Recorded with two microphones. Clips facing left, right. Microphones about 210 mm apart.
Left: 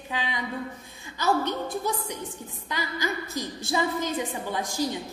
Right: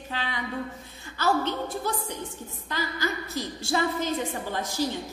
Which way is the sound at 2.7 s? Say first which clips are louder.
Even; 15° left (ahead or behind).